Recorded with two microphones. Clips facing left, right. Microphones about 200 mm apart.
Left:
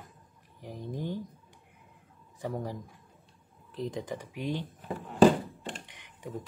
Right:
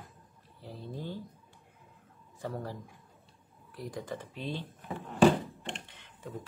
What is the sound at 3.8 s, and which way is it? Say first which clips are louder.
Speech: left 4 dB; 20° left (ahead or behind).